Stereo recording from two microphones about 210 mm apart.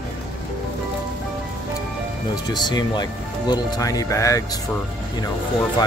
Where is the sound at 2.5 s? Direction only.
20° left (ahead or behind).